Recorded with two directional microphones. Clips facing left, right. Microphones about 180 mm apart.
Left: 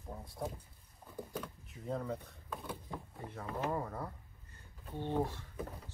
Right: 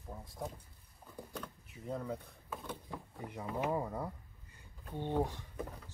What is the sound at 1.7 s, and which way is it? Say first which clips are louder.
Speech: left 1 dB; 5° right (ahead or behind).